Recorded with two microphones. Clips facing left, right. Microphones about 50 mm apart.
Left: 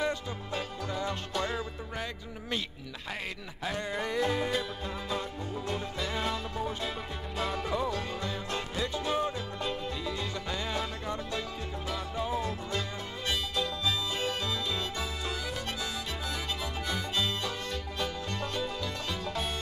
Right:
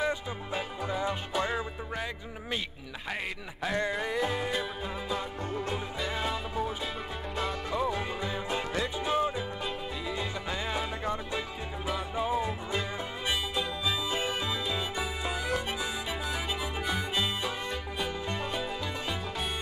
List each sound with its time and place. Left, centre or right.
0.0 s music: centre
3.9 s music: centre
5.7 s music: centre